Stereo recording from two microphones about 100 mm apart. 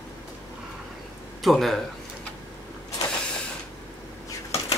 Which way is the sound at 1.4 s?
Centre (ahead or behind).